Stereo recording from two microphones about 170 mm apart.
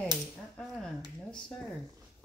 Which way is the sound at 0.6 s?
5° left (ahead or behind).